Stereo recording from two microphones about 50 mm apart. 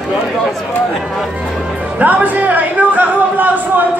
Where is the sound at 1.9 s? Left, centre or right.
Right.